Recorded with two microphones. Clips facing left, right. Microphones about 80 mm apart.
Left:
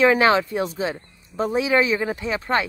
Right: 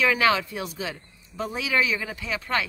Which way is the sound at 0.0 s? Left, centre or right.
Left.